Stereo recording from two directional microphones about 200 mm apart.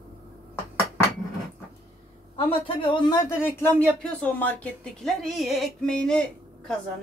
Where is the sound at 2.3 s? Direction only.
25° left (ahead or behind); by 6.2 s 5° left (ahead or behind).